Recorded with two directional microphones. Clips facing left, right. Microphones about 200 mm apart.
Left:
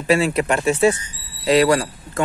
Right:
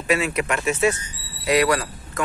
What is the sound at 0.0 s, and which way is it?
Speech, 30° left (ahead or behind).